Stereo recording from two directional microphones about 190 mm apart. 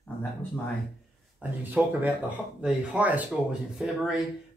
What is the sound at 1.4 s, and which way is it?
Speech, 10° right (ahead or behind).